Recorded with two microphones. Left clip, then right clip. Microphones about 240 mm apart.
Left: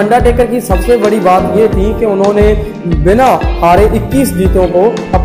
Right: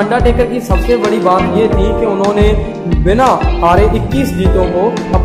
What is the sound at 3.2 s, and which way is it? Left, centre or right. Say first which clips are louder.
Speech: even; centre.